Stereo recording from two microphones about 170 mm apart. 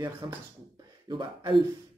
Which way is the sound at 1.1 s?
25° right (ahead or behind).